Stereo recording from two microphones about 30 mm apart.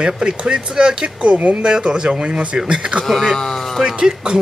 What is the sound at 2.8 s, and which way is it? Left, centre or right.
Speech, right.